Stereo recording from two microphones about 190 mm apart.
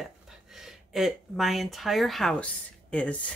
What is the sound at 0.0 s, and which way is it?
Speech, centre (ahead or behind).